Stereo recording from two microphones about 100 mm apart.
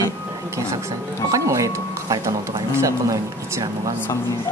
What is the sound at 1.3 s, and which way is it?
Speech, 30° right (ahead or behind).